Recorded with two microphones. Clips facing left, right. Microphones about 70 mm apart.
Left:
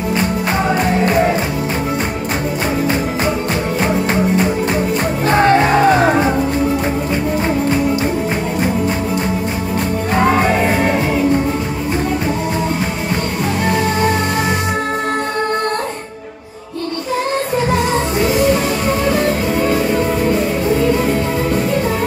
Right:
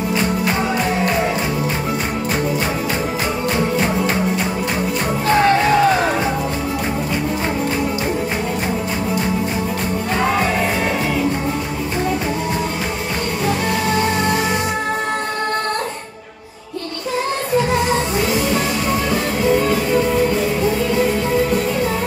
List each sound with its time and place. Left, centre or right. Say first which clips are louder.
5.4 s music: left 3 dB; left